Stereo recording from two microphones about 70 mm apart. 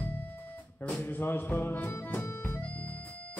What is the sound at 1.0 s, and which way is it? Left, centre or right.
Music, left.